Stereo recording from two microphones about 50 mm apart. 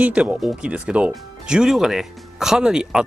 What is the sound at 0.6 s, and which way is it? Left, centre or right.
Speech, centre.